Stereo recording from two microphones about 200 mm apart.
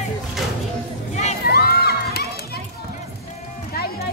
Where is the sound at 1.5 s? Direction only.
50° left (ahead or behind).